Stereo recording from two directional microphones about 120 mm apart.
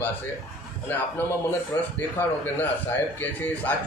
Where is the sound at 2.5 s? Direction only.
15° left (ahead or behind).